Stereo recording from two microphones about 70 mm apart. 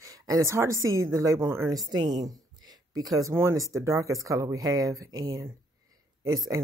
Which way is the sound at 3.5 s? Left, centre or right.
Right.